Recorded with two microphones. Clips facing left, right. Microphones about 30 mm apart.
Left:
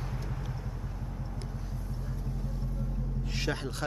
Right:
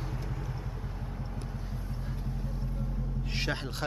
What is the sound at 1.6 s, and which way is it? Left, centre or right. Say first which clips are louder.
Vehicle: even; right.